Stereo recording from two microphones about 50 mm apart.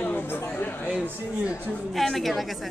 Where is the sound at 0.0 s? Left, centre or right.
Left.